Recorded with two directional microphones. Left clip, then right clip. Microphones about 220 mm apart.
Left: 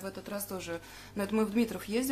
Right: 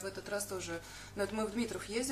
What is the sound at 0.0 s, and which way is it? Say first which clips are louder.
Speech: even; 40° left (ahead or behind).